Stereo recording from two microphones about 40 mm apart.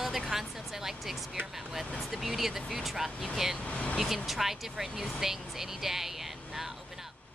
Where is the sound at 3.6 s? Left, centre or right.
Left.